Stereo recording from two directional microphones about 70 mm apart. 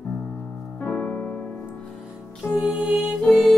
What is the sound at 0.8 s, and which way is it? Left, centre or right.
Piano, left.